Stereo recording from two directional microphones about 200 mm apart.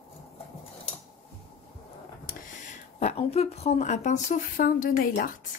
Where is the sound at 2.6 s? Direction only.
35° left (ahead or behind).